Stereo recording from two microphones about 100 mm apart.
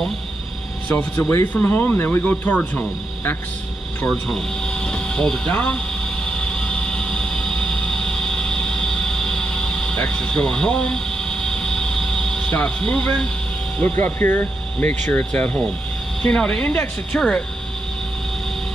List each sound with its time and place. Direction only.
0.8 s speech: 15° left (ahead or behind)
4.1 s speech: 5° left (ahead or behind)
6.2 s vehicle: 10° left (ahead or behind)
13.7 s speech: 20° left (ahead or behind)